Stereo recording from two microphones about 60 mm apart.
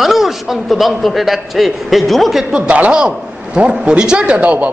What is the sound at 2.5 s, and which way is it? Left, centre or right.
A man's voice, centre.